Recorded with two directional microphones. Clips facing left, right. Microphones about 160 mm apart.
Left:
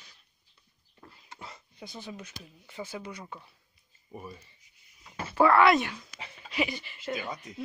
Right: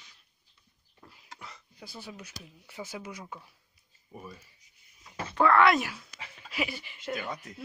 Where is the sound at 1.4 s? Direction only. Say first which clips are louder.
Left 3 dB; 25° left (ahead or behind).